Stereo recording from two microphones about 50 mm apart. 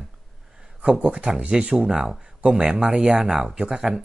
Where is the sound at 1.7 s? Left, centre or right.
Centre.